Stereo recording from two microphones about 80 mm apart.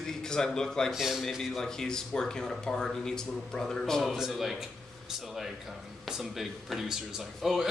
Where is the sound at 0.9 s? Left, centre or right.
Centre.